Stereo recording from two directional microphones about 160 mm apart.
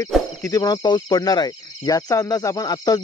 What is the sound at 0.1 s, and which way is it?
Speech, centre (ahead or behind).